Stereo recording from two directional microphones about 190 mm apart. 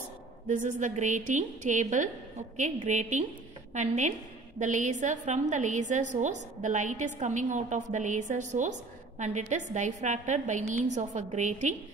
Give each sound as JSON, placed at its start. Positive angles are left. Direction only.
{"t": 0.5, "sound": "a woman's voice", "side_deg": -40}